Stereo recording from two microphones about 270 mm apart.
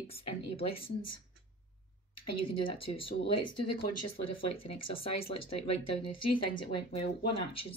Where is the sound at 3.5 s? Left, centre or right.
Left.